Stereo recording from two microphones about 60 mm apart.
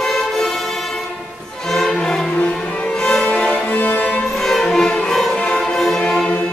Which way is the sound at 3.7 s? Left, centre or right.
Left.